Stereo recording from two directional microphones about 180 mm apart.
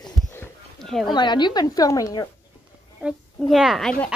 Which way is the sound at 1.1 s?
25° left (ahead or behind).